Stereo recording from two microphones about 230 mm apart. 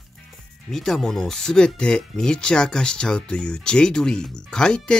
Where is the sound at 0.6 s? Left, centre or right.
Centre.